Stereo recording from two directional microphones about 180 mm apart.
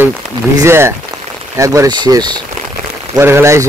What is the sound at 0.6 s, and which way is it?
Speech, 15° right (ahead or behind).